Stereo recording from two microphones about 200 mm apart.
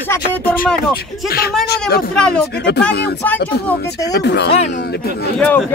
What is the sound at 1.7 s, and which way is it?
Speech, 50° left (ahead or behind).